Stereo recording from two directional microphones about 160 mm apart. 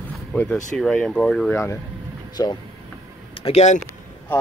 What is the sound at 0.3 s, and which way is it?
Speech, 5° left (ahead or behind).